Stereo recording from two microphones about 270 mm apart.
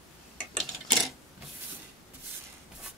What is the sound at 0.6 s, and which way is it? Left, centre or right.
Clock, centre.